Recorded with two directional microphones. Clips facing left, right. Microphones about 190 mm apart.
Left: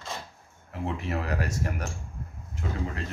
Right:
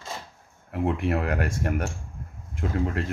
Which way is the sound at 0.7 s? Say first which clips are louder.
Right 6 dB; 60° right (ahead or behind).